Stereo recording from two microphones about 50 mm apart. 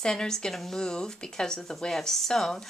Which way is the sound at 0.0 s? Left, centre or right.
Centre.